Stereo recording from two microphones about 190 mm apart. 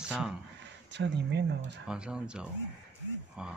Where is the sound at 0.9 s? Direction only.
65° right (ahead or behind).